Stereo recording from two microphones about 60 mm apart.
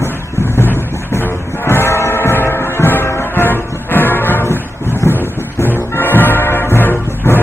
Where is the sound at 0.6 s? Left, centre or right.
Left.